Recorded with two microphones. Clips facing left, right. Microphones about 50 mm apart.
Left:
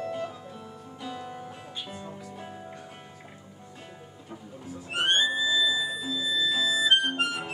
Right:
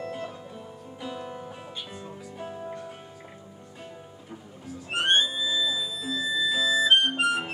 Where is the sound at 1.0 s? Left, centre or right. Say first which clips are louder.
Right 1 dB; centre.